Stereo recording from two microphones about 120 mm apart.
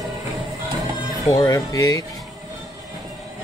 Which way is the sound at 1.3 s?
30° left (ahead or behind).